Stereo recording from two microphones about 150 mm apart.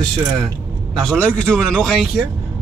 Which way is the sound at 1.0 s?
10° left (ahead or behind).